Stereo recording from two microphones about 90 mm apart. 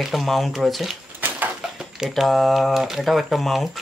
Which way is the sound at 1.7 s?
5° right (ahead or behind).